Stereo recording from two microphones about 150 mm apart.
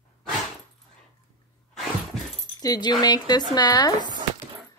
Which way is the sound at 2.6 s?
25° left (ahead or behind).